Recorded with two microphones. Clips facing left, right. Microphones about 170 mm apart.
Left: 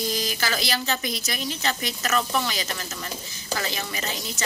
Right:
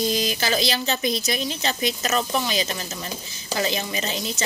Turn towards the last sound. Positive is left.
turn(degrees=-20)  # may be behind; listen again after turning